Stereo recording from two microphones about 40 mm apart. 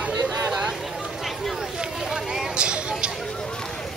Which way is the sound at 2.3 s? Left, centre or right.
Right.